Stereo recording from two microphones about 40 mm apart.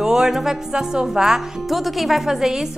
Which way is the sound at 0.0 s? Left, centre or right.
Centre.